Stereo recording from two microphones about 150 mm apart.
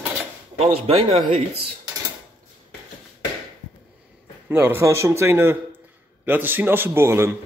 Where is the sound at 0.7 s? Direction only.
40° right (ahead or behind).